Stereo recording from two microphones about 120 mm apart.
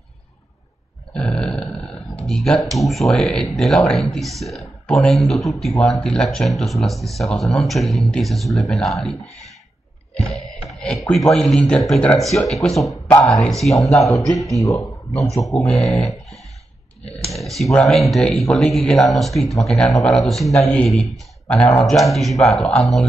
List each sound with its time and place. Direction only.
1.1 s grunt: 5° left (ahead or behind)
2.2 s speech: 5° left (ahead or behind)
10.1 s speech: centre (ahead or behind)
14.6 s speech: 25° left (ahead or behind)
15.3 s speech: centre (ahead or behind)